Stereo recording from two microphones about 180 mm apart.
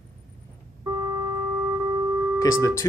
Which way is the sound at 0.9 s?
20° right (ahead or behind).